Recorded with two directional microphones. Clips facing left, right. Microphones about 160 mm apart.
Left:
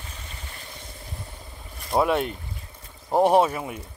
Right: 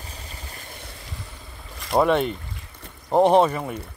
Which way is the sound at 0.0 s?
35° right (ahead or behind).